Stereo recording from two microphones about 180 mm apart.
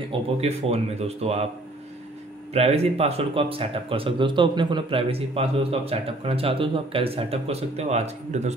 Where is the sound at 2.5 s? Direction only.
35° right (ahead or behind).